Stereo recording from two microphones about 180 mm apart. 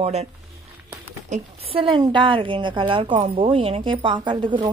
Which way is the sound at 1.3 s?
30° right (ahead or behind).